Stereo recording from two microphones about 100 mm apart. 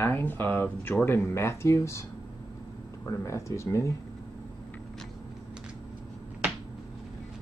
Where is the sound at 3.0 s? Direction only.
30° left (ahead or behind).